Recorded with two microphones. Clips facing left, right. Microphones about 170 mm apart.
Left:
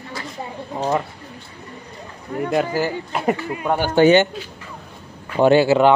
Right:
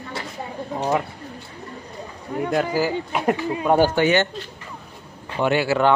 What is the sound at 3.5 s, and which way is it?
Speech, 20° right (ahead or behind).